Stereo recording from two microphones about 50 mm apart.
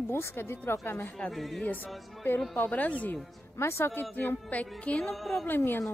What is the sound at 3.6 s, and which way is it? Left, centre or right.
Speech, left.